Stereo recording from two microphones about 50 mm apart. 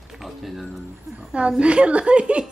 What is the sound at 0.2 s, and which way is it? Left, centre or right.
Speech, centre.